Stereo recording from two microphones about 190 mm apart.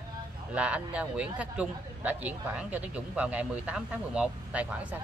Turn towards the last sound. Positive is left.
turn(degrees=-5)  # may be behind; listen again after turning